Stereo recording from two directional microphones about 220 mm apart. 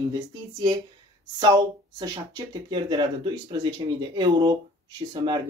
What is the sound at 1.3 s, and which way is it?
Speech, 15° right (ahead or behind).